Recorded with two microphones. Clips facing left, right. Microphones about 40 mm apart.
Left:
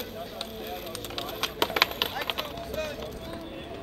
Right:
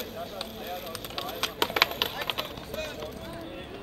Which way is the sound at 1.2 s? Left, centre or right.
Centre.